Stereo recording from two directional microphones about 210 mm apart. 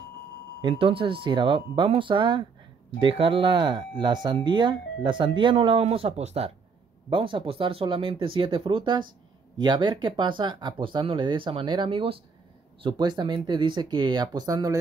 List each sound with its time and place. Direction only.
0.6 s speech: 25° right (ahead or behind)